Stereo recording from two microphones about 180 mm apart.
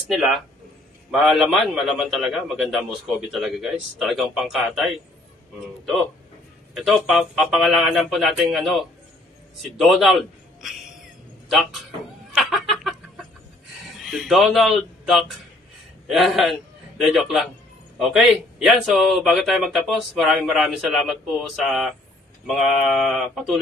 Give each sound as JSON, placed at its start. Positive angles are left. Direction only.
{"t": 0.1, "sound": "a man's voice", "side_deg": 0}
{"t": 6.7, "sound": "a man's voice", "side_deg": 0}
{"t": 12.4, "sound": "chicken", "side_deg": 0}
{"t": 14.0, "sound": "a man's voice", "side_deg": 0}